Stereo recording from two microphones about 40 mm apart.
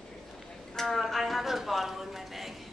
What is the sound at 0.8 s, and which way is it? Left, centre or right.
A woman's voice, centre.